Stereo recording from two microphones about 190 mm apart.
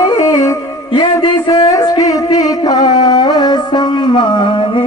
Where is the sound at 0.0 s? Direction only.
15° left (ahead or behind).